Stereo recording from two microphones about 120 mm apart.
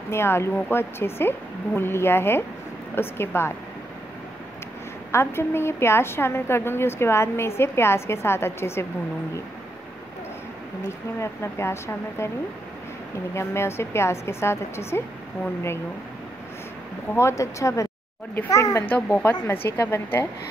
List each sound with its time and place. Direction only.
0.1 s a woman's voice: 20° left (ahead or behind)
5.1 s a woman's voice: 20° left (ahead or behind)
11.1 s a woman's voice: 20° left (ahead or behind)
13.3 s a woman's voice: 20° left (ahead or behind)
17.1 s a woman's voice: 25° left (ahead or behind)
19.1 s a woman's voice: 20° left (ahead or behind)